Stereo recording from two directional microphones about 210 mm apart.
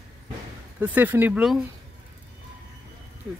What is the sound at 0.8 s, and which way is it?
Speech, 10° right (ahead or behind).